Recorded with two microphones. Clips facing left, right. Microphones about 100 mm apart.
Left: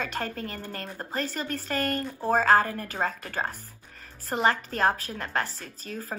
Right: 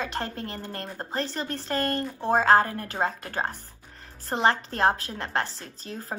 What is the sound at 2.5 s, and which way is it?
Speech, 45° right (ahead or behind).